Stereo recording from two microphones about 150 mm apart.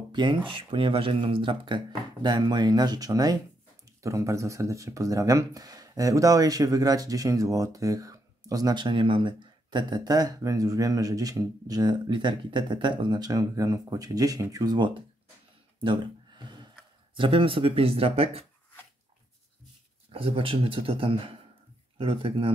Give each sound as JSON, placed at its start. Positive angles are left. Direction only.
{"t": 0.1, "sound": "speech", "side_deg": -30}
{"t": 20.1, "sound": "speech", "side_deg": -35}